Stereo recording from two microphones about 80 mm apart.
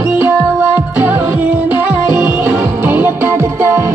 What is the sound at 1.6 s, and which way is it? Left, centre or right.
Music, right.